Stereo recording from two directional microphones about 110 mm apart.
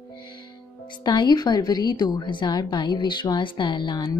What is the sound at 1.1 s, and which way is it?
A woman's voice, 40° left (ahead or behind).